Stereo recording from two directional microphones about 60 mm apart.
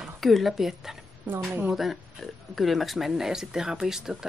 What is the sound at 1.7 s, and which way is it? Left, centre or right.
Speech, centre.